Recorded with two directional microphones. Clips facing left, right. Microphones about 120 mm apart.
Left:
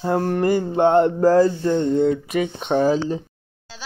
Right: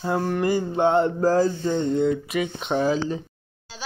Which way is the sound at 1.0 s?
75° left (ahead or behind).